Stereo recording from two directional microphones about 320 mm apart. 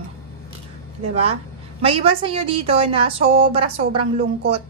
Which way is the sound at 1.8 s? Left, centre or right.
Centre.